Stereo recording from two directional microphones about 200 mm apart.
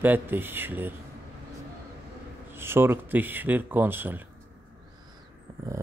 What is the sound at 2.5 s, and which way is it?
Speech, 10° right (ahead or behind).